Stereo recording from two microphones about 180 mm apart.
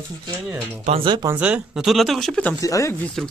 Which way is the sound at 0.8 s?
30° right (ahead or behind).